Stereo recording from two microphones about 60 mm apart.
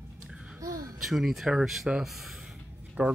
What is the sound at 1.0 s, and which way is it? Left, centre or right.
Speech, centre.